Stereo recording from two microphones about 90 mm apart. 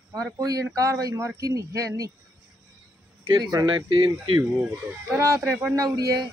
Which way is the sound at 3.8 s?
60° right (ahead or behind).